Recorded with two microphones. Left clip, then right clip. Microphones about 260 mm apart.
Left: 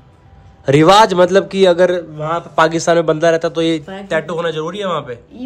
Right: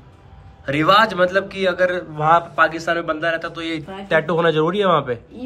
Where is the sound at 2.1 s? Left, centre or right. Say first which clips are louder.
Right 5 dB; centre.